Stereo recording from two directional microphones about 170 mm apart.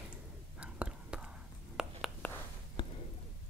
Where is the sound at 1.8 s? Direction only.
5° right (ahead or behind).